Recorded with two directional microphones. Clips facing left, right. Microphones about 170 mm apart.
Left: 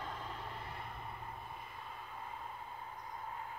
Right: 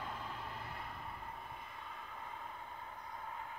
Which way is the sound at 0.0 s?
5° right (ahead or behind).